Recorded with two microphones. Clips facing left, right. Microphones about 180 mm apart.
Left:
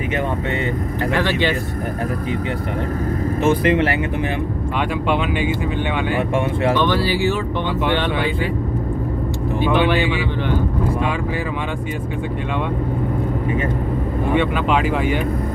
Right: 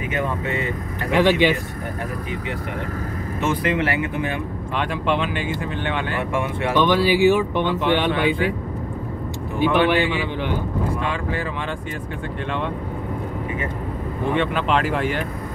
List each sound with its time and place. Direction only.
1.1 s speech: 15° right (ahead or behind)
3.4 s speech: 30° left (ahead or behind)
4.7 s speech: 5° left (ahead or behind)
6.9 s speech: 15° right (ahead or behind)
14.3 s speech: 5° left (ahead or behind)